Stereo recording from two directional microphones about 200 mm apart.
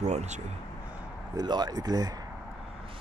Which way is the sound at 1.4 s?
20° right (ahead or behind).